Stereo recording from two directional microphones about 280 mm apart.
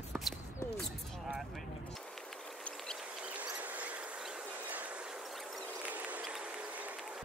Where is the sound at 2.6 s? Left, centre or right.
Centre.